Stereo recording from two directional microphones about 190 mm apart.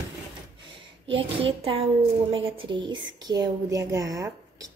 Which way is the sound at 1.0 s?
30° right (ahead or behind).